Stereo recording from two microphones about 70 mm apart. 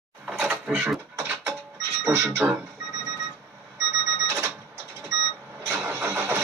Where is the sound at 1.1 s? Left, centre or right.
Right.